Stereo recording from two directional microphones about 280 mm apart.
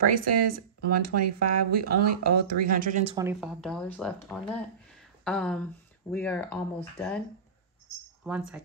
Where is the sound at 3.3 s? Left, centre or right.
Centre.